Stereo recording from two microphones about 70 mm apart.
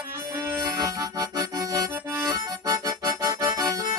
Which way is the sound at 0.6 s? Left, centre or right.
Right.